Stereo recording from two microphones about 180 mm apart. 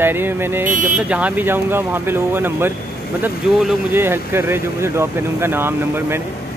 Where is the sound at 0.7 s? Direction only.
45° right (ahead or behind).